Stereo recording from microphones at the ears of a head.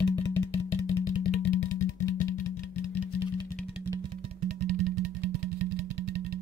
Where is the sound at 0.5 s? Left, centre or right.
Left.